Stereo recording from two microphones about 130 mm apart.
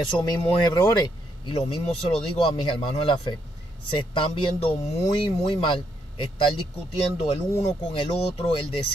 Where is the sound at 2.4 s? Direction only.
45° left (ahead or behind).